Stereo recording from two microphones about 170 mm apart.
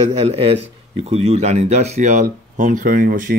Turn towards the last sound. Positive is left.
turn(degrees=-50)  # may be behind; listen again after turning